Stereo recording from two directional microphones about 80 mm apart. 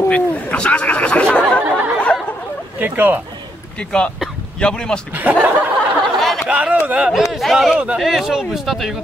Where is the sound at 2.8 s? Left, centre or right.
Right.